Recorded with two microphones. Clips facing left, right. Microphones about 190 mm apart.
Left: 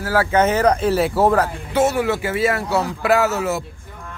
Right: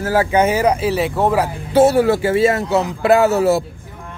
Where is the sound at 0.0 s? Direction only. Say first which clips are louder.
Right 2 dB; 20° right (ahead or behind); by 1.4 s centre (ahead or behind).